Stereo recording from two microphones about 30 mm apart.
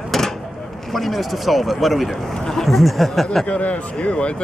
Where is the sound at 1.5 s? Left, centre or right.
Centre.